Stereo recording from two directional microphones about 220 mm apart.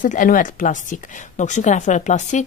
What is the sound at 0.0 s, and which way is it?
Speech, 35° left (ahead or behind).